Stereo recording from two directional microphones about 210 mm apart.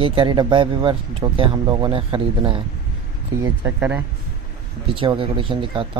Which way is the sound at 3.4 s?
10° right (ahead or behind).